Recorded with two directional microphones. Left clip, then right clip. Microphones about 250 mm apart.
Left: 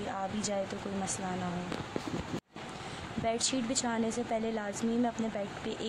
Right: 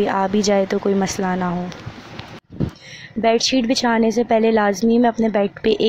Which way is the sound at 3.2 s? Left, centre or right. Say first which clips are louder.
Right 16 dB; right.